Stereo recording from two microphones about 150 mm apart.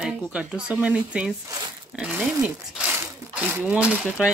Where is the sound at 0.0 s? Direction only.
5° right (ahead or behind).